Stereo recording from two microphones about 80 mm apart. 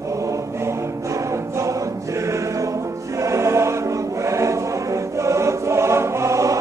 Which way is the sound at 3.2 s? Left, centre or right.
Right.